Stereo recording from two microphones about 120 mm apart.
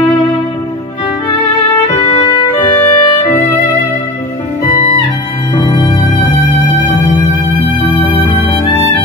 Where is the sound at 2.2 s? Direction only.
40° left (ahead or behind).